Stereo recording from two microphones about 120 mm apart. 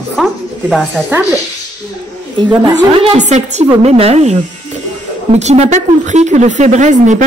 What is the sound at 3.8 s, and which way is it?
A woman's voice, 60° right (ahead or behind).